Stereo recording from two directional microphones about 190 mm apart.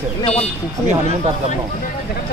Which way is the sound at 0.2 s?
35° left (ahead or behind).